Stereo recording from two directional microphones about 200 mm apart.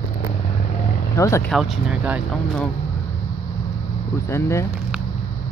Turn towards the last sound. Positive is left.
turn(degrees=15)  # may be behind; listen again after turning